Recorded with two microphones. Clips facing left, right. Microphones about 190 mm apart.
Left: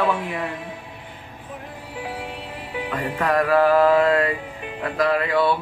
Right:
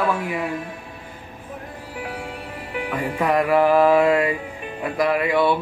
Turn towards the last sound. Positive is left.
turn(degrees=-15)  # may be behind; listen again after turning